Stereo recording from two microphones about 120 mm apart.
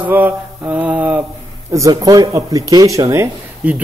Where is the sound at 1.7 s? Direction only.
30° right (ahead or behind).